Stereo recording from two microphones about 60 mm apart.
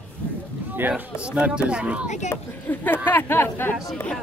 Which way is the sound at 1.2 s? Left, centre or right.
Centre.